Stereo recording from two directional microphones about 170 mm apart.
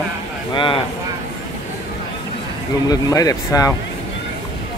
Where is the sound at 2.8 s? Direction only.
20° left (ahead or behind).